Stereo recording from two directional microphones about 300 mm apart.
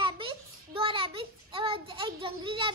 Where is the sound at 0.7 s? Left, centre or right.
Centre.